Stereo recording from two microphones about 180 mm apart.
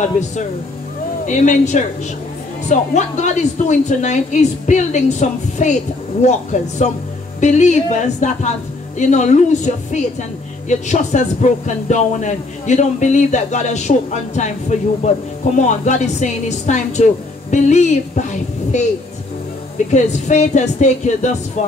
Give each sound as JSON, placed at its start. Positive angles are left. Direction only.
{"t": 1.2, "sound": "a man's voice", "side_deg": 40}
{"t": 19.9, "sound": "a man's voice", "side_deg": 40}